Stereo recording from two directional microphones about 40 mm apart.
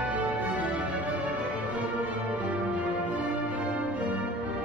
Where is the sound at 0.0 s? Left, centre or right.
Right.